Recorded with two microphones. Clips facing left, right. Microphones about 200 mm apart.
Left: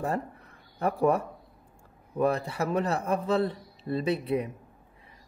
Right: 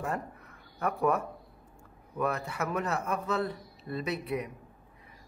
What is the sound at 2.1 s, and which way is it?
Speech, 30° left (ahead or behind).